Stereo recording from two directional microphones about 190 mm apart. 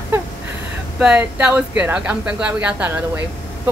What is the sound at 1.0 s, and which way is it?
Speech, 5° right (ahead or behind).